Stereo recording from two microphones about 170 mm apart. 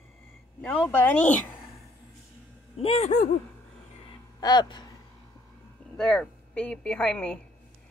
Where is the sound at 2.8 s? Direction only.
35° left (ahead or behind).